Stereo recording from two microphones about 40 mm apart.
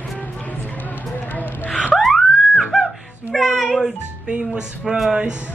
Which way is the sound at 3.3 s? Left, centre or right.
Centre.